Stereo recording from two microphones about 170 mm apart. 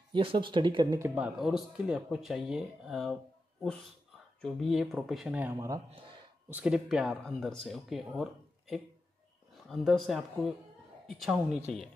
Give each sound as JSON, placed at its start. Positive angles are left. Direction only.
{"t": 0.1, "sound": "speech", "side_deg": -30}
{"t": 1.0, "sound": "speech", "side_deg": -5}
{"t": 4.4, "sound": "speech", "side_deg": 0}
{"t": 6.5, "sound": "speech", "side_deg": -5}